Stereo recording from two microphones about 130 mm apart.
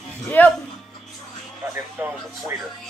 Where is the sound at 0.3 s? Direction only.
15° left (ahead or behind).